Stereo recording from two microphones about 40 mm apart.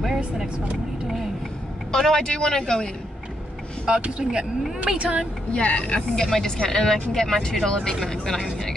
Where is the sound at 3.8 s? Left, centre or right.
Right.